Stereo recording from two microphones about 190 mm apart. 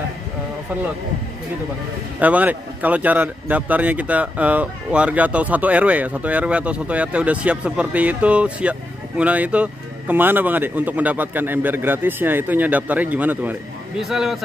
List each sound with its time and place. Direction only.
2.1 s speech: 10° right (ahead or behind)